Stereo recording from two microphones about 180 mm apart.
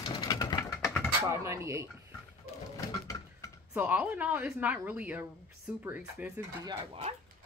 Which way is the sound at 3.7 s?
10° right (ahead or behind).